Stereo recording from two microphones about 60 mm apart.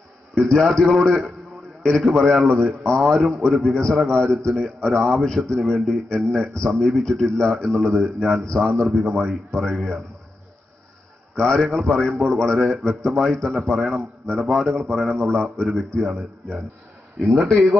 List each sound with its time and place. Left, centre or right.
0.5 s a man's voice: centre
11.3 s a man's voice: centre